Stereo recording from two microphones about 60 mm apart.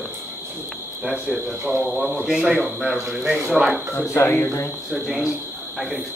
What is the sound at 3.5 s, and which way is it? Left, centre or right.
Speech, centre.